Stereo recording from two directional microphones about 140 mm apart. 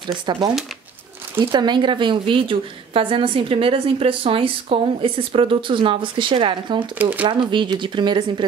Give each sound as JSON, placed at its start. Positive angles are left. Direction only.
{"t": 0.3, "sound": "a woman's voice", "side_deg": -35}
{"t": 1.5, "sound": "a woman's voice", "side_deg": -30}
{"t": 7.0, "sound": "speech", "side_deg": -10}
{"t": 7.2, "sound": "a woman's voice", "side_deg": -35}